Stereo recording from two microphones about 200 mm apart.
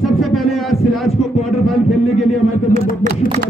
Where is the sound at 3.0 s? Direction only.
45° right (ahead or behind).